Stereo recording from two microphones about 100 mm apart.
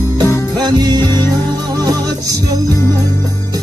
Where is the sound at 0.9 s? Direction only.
25° left (ahead or behind).